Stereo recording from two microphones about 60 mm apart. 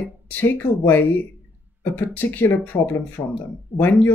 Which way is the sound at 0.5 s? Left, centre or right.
Left.